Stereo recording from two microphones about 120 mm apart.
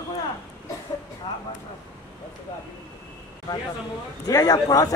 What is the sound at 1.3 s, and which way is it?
Speech, 40° left (ahead or behind).